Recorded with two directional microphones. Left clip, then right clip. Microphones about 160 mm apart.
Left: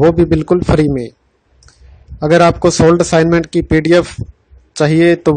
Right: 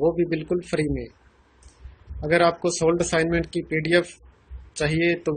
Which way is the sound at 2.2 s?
65° left (ahead or behind).